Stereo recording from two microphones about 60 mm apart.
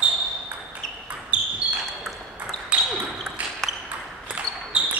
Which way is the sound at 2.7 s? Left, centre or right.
Centre.